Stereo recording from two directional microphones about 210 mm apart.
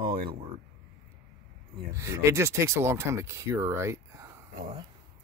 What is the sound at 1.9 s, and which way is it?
Speech, 15° right (ahead or behind).